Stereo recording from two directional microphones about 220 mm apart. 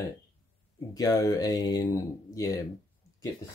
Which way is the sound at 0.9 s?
15° left (ahead or behind).